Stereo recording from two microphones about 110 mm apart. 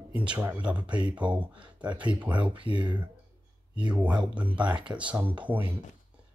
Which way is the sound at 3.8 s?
15° right (ahead or behind).